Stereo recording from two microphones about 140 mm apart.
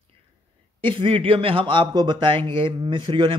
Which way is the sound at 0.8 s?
40° right (ahead or behind).